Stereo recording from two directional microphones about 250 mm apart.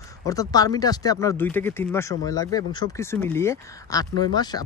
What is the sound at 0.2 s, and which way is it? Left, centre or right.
Speech, centre.